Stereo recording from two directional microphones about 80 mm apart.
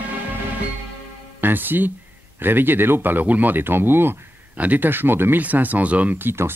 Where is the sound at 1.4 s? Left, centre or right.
Right.